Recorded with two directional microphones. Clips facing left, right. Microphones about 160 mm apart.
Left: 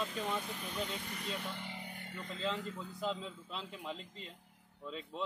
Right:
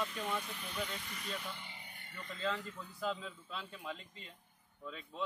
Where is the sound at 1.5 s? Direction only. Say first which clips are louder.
Left 7 dB; 85° left.